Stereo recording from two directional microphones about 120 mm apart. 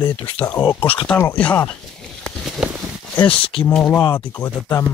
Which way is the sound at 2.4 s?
5° right (ahead or behind).